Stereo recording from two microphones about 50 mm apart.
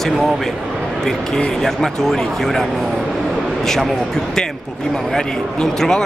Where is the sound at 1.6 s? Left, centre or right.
Centre.